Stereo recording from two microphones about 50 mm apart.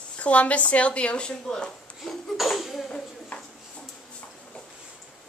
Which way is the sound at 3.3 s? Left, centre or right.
Left.